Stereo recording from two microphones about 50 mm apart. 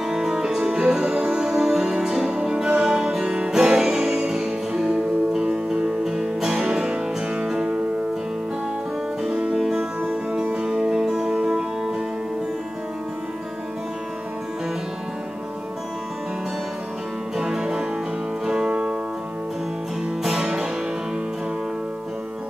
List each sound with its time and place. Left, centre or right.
0.0 s music: centre
9.2 s music: centre
17.4 s music: centre
20.2 s music: centre